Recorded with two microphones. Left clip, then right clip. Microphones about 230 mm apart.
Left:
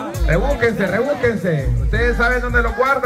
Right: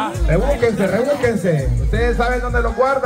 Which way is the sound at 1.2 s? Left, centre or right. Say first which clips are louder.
Right 1 dB; centre.